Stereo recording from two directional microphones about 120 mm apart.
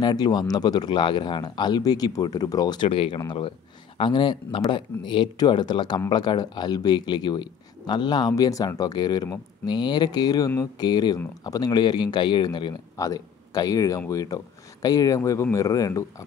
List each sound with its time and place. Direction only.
0.0 s speech: 35° left (ahead or behind)
12.9 s speech: 30° left (ahead or behind)